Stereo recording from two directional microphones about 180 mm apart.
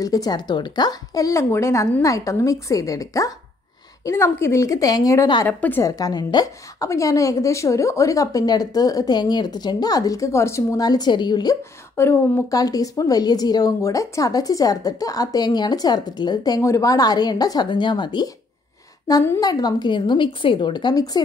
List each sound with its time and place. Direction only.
0.0 s a woman's voice: 20° left (ahead or behind)